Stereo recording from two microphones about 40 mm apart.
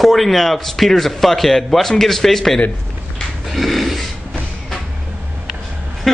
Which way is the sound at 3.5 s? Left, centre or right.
Centre.